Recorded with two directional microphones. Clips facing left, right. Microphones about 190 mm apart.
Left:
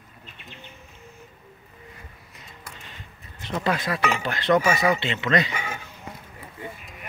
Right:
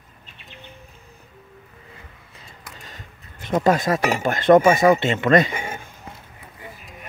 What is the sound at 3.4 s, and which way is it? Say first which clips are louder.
Speech: right 7 dB; 45° right (ahead or behind).